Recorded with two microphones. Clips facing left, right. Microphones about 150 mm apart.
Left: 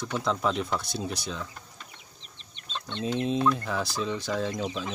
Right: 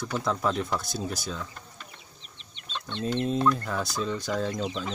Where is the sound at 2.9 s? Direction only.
5° left (ahead or behind).